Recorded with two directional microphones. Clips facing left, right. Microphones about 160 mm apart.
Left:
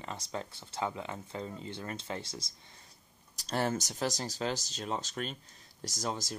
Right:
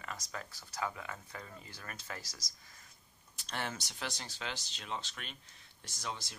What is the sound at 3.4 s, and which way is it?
Speech, 40° left (ahead or behind).